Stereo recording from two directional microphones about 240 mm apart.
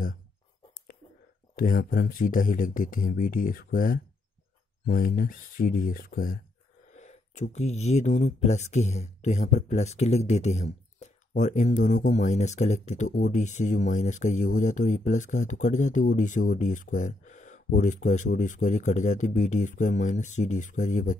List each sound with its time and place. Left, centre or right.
1.5 s speech: left